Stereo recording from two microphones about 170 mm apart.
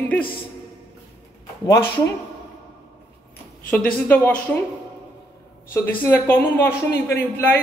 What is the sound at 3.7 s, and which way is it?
Speech, 10° left (ahead or behind).